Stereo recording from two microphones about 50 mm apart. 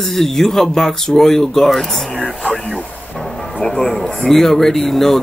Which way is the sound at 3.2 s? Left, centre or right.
Centre.